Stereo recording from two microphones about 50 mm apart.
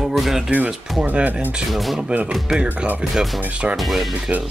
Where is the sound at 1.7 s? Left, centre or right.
Centre.